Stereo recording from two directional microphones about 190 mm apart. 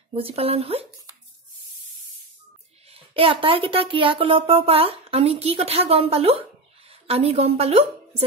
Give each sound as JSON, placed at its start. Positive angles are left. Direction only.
{"t": 0.1, "sound": "speech", "side_deg": -30}
{"t": 2.9, "sound": "a woman's voice", "side_deg": -30}